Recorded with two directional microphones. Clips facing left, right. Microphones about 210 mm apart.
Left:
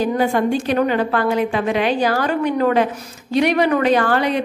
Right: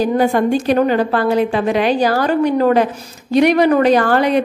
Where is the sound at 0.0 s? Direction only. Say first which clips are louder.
Right 3 dB; 40° right (ahead or behind).